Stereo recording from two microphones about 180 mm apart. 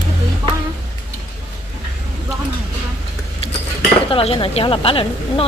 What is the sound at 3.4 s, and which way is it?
Speech, 35° left (ahead or behind).